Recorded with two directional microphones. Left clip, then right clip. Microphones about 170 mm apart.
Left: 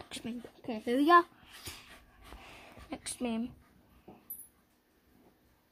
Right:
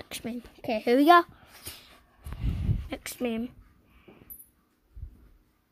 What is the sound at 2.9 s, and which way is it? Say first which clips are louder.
Speech: right 5 dB; 15° right (ahead or behind).